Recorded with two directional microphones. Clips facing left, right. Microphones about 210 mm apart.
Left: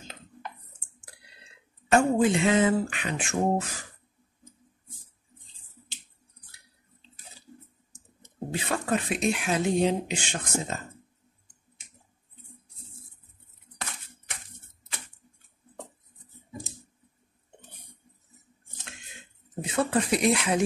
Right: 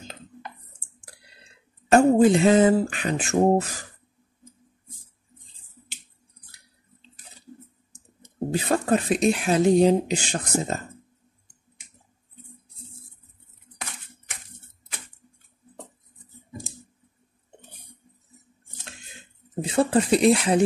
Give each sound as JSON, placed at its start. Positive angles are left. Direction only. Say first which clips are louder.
{"t": 1.9, "sound": "speech", "louder": "right 6 dB", "side_deg": -35}
{"t": 8.2, "sound": "speech", "louder": "right 7 dB", "side_deg": -40}
{"t": 19.6, "sound": "speech", "louder": "right 5 dB", "side_deg": -30}